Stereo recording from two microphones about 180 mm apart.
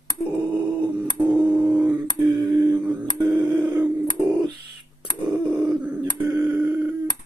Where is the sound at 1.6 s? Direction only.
10° right (ahead or behind).